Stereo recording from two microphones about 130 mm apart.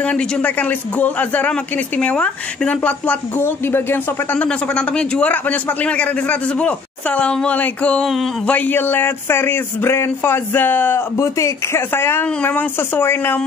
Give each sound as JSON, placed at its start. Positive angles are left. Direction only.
{"t": 0.0, "sound": "speech", "side_deg": 10}
{"t": 8.5, "sound": "speech", "side_deg": 10}